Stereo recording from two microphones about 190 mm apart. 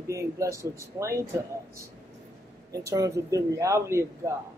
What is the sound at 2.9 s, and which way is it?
Speech, 15° right (ahead or behind).